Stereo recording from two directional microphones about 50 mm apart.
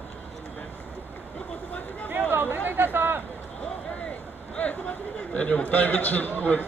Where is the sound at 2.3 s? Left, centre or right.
Right.